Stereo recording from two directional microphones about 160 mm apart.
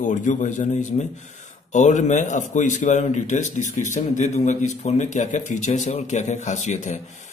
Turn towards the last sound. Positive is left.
turn(degrees=45)  # may be behind; listen again after turning